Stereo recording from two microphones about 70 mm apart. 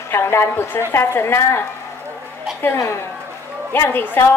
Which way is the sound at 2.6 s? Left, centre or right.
Left.